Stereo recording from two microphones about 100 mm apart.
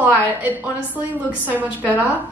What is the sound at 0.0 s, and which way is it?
A woman's voice, 15° right (ahead or behind).